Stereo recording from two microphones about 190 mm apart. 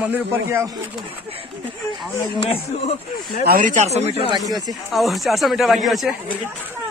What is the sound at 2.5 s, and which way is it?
Speech, 30° left (ahead or behind).